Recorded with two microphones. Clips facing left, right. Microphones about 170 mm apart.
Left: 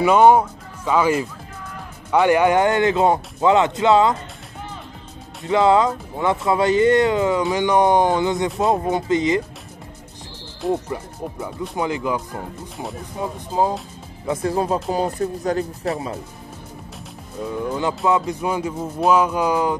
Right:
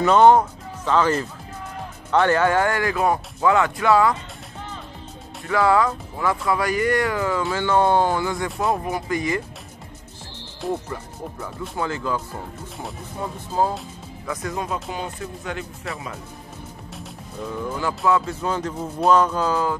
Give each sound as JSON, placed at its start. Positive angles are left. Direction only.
{"t": 0.0, "sound": "speech", "side_deg": 10}
{"t": 5.5, "sound": "speech", "side_deg": 20}
{"t": 10.7, "sound": "speech", "side_deg": 15}
{"t": 13.2, "sound": "speech", "side_deg": 15}
{"t": 14.2, "sound": "speech", "side_deg": 30}
{"t": 17.7, "sound": "speech", "side_deg": 20}